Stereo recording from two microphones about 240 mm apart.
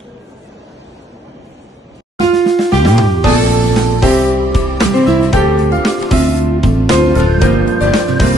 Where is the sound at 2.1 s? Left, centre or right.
Centre.